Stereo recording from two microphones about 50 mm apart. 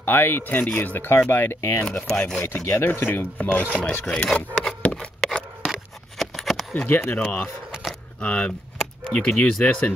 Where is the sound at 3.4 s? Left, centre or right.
Left.